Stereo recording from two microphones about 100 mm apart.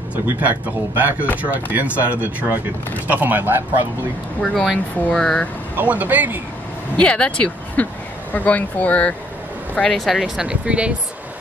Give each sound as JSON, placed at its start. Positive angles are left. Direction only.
{"t": 0.1, "sound": "speech", "side_deg": -20}
{"t": 4.4, "sound": "speech", "side_deg": 5}
{"t": 5.8, "sound": "speech", "side_deg": -15}
{"t": 7.0, "sound": "speech", "side_deg": 10}
{"t": 9.8, "sound": "speech", "side_deg": 5}